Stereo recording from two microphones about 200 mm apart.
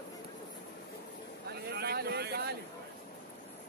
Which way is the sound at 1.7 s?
55° right (ahead or behind).